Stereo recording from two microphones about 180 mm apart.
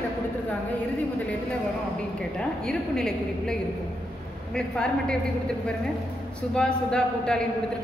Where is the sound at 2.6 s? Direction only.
5° left (ahead or behind).